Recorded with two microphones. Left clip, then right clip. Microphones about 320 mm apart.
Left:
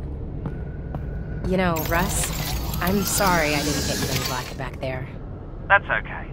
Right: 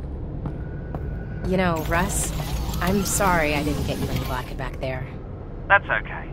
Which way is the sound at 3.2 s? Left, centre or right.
Centre.